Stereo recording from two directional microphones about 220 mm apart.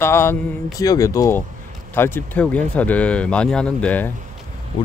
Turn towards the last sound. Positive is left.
turn(degrees=5)  # may be behind; listen again after turning